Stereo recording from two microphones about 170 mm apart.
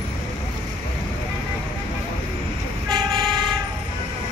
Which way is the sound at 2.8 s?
25° right (ahead or behind).